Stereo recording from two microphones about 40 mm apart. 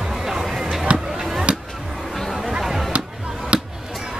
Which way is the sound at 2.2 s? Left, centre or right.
Centre.